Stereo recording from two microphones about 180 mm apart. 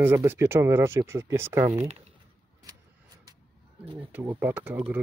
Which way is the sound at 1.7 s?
35° right (ahead or behind).